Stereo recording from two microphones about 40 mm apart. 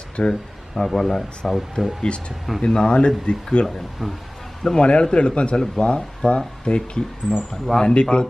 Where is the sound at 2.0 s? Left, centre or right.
Left.